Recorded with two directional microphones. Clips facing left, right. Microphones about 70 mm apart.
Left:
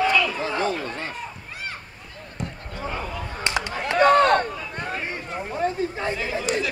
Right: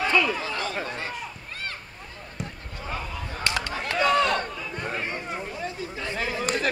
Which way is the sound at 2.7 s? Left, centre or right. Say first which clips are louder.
Left 4 dB; left.